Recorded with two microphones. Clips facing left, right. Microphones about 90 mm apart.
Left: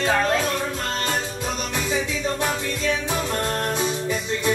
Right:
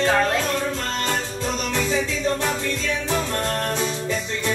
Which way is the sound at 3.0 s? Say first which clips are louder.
Right 1 dB; 15° left (ahead or behind).